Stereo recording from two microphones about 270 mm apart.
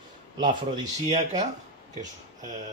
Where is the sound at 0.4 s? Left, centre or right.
Centre.